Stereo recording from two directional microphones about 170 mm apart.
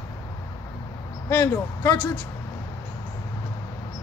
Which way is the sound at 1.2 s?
15° left (ahead or behind).